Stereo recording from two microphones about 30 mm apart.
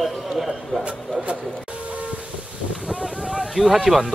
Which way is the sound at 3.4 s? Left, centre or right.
Centre.